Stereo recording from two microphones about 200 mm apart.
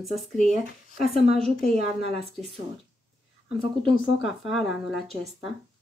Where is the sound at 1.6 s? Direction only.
30° right (ahead or behind).